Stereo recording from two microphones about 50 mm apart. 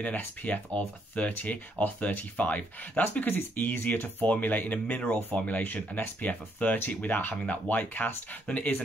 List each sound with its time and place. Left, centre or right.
0.4 s speech: left
3.0 s speech: left
5.9 s speech: left